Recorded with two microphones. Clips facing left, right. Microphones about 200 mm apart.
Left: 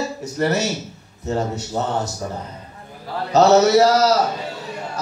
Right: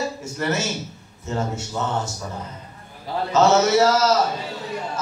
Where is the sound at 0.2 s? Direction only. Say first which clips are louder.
Left 4 dB; 35° left (ahead or behind).